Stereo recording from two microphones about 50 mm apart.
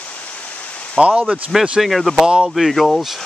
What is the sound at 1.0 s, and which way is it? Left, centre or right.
Speech, centre.